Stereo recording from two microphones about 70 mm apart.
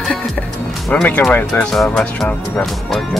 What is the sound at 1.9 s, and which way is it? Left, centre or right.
Speech, centre.